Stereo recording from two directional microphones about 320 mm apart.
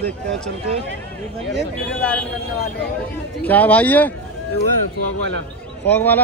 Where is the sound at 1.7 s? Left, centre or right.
Centre.